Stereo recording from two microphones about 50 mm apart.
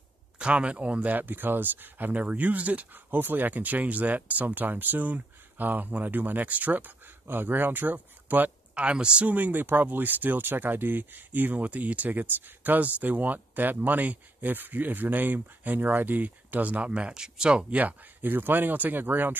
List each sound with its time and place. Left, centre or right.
0.4 s speech: right
8.7 s speech: centre
9.2 s speech: right; by 17.7 s centre
17.7 s speech: right